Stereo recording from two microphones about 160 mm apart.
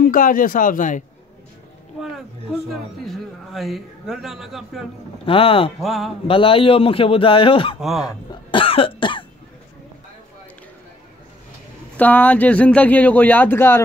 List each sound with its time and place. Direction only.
0.0 s speech: 60° left (ahead or behind)
2.7 s a man's voice: centre (ahead or behind)
5.2 s a man's voice: 35° left (ahead or behind)
5.8 s a man's voice: centre (ahead or behind)
6.2 s a man's voice: 35° left (ahead or behind)
12.0 s speech: 10° left (ahead or behind)